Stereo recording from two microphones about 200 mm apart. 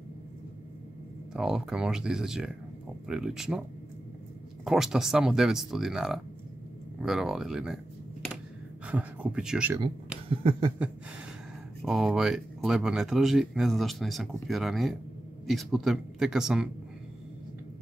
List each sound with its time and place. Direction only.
1.3 s speech: 5° right (ahead or behind)
4.6 s speech: centre (ahead or behind)
8.8 s speech: 5° right (ahead or behind)
10.3 s a sound: 25° right (ahead or behind)
11.8 s speech: centre (ahead or behind)